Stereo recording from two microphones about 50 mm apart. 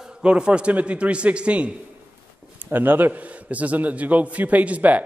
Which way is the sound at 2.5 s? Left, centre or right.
Right.